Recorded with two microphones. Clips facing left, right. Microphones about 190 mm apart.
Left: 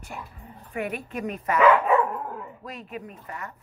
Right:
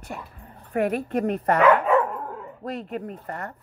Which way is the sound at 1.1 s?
60° right (ahead or behind).